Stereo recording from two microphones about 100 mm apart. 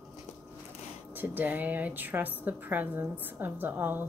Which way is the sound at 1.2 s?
20° right (ahead or behind).